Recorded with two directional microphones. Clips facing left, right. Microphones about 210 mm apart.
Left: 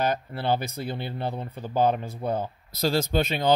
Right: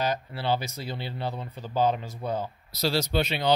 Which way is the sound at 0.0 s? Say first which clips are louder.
Left 2 dB; 50° left (ahead or behind).